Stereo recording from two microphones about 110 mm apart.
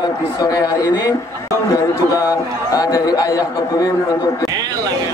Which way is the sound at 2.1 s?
35° left (ahead or behind).